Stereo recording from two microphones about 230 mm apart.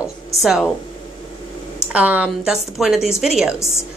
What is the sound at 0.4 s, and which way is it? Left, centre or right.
Speech, centre.